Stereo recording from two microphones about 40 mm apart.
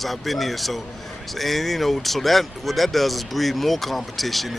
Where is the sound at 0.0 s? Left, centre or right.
Centre.